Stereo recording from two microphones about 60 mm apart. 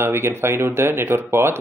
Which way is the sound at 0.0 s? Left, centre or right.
Right.